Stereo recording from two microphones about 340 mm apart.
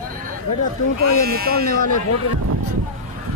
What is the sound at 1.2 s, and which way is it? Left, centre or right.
Speech, right.